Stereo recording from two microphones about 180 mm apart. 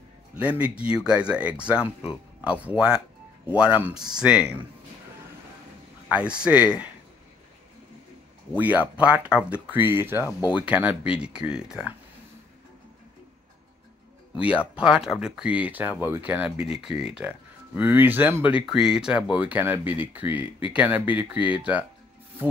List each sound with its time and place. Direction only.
0.4 s speech: 5° right (ahead or behind)
6.0 s speech: 5° right (ahead or behind)
8.5 s speech: 10° right (ahead or behind)
14.8 s speech: 5° right (ahead or behind)